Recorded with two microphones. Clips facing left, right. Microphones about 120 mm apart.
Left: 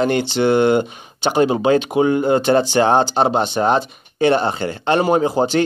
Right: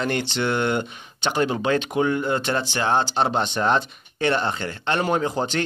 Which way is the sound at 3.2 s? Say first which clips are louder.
Left 5 dB; 10° left (ahead or behind).